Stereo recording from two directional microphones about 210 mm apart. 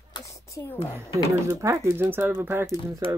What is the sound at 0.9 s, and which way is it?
Speech, 15° right (ahead or behind).